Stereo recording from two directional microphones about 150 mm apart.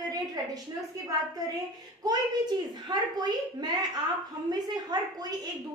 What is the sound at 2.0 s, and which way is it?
A woman's voice, 25° right (ahead or behind).